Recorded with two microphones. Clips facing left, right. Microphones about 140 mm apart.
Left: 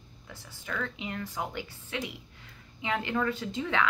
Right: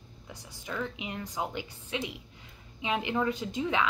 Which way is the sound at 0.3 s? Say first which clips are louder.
Even; 15° right (ahead or behind).